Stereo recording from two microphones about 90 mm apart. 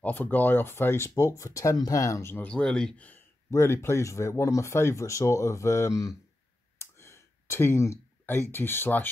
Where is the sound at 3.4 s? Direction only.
30° left (ahead or behind).